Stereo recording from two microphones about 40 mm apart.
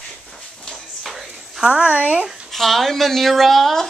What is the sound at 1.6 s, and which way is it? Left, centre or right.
Speech, right.